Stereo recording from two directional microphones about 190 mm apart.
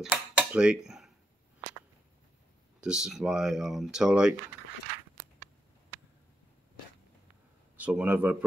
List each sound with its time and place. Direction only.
0.4 s dishes: 5° right (ahead or behind)
0.8 s a sound: centre (ahead or behind)
2.8 s speech: 5° right (ahead or behind)
7.7 s speech: 10° right (ahead or behind)